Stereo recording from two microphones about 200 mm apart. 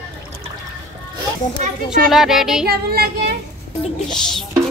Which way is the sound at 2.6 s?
50° right (ahead or behind).